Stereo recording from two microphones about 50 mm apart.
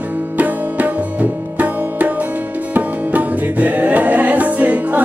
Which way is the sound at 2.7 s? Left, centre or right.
Right.